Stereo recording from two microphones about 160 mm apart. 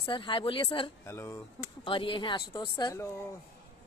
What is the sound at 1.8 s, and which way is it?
Speech, 30° left (ahead or behind).